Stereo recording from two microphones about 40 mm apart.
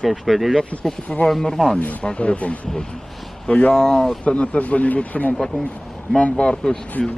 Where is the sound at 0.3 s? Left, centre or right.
Centre.